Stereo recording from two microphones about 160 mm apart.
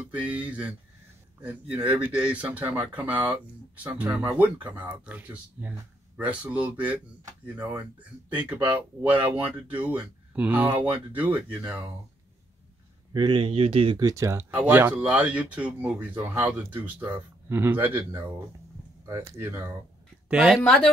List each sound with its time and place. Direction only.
0.1 s speech: 10° right (ahead or behind)
13.1 s speech: 30° right (ahead or behind)
14.0 s speech: 20° right (ahead or behind)
20.2 s speech: 5° right (ahead or behind)